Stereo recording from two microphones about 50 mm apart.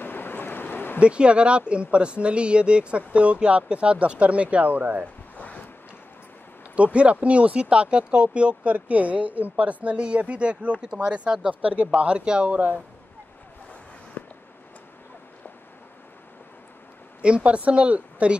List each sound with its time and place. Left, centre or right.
0.0 s a sound: left
1.0 s speech: right
5.4 s boat: left
6.7 s speech: right
14.2 s a sound: left
17.2 s speech: right